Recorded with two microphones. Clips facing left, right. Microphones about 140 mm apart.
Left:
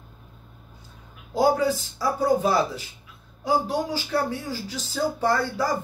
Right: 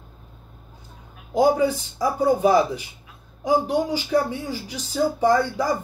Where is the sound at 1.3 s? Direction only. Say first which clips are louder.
Right 2 dB; 15° right (ahead or behind).